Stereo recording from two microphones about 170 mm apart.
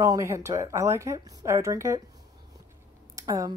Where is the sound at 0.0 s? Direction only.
15° right (ahead or behind).